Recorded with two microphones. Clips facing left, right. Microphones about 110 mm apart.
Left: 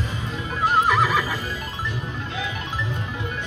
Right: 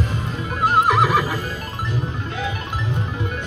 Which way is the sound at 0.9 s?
15° right (ahead or behind).